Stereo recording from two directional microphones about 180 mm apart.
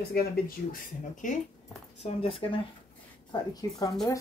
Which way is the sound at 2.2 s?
30° left (ahead or behind).